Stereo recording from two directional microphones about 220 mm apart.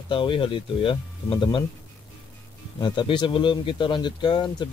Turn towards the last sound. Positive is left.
turn(degrees=20)  # may be behind; listen again after turning